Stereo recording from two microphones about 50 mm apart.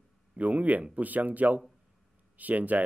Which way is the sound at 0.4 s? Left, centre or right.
Right.